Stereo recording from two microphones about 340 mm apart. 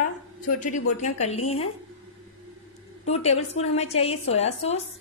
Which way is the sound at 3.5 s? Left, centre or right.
Centre.